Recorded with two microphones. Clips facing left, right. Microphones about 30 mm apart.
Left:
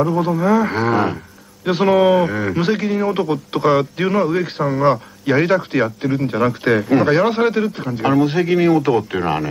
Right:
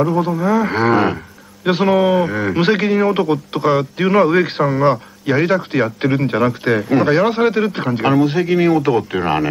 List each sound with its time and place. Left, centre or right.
0.0 s a man's voice: centre
2.5 s speech: right
3.5 s a man's voice: centre
4.1 s speech: right
4.6 s a man's voice: centre
6.0 s speech: right
6.4 s a man's voice: centre